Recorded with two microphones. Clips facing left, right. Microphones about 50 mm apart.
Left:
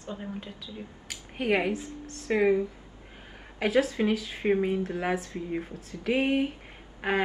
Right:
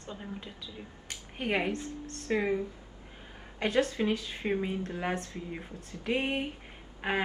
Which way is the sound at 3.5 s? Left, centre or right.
Centre.